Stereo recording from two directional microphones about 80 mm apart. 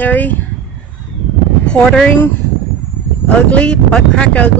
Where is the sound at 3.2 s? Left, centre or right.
Centre.